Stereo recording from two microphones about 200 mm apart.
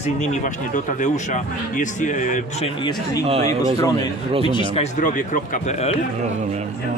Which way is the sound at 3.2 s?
30° right (ahead or behind).